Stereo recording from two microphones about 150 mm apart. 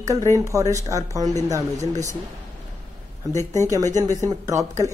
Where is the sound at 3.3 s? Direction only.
20° left (ahead or behind).